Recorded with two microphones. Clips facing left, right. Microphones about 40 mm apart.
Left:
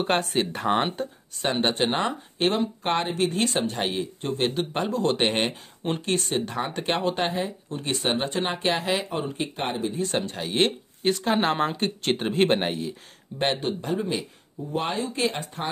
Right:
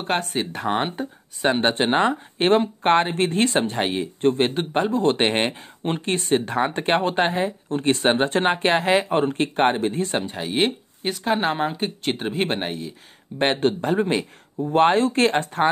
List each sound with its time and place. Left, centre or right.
0.0 s speech: centre
1.4 s speech: right
9.2 s speech: right
10.1 s speech: centre
13.6 s speech: right
14.6 s speech: right